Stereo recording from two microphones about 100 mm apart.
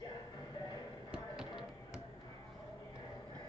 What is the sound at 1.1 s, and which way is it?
Music, 5° right (ahead or behind).